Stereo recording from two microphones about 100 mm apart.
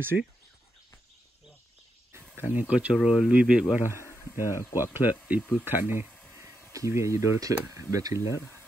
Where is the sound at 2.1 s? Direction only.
20° right (ahead or behind).